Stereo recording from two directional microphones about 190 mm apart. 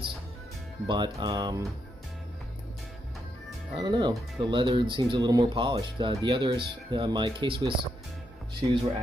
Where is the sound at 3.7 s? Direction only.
25° right (ahead or behind).